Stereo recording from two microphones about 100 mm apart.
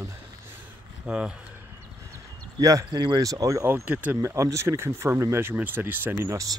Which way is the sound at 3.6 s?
20° right (ahead or behind).